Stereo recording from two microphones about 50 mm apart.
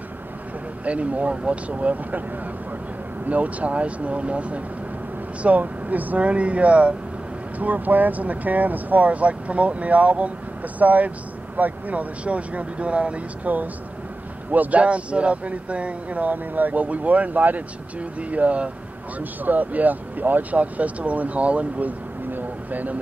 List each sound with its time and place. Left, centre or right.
0.8 s speech: right
3.3 s speech: right